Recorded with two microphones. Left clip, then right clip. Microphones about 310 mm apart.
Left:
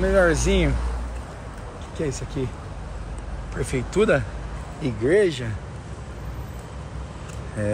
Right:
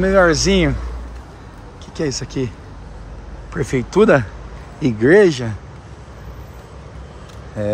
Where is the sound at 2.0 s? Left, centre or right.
Right.